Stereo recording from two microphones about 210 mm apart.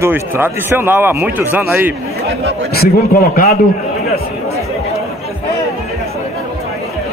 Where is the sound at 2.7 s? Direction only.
45° left (ahead or behind).